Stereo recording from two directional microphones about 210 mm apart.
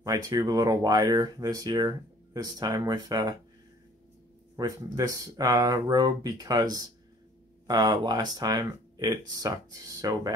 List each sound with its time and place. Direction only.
0.0 s speech: 15° right (ahead or behind)
4.6 s speech: 15° right (ahead or behind)